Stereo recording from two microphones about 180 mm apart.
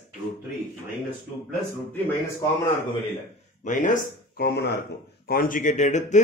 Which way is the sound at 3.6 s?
45° left (ahead or behind).